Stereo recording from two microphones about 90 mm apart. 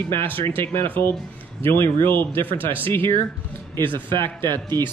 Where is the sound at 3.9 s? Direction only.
65° right (ahead or behind).